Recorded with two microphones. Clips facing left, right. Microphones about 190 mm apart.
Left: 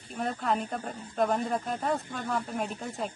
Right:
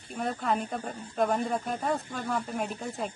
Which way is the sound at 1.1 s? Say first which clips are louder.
Even; centre (ahead or behind).